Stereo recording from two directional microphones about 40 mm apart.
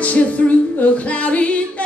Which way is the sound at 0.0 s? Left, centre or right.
Left.